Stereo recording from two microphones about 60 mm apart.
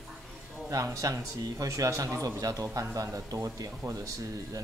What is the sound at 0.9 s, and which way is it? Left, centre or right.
Speech, right.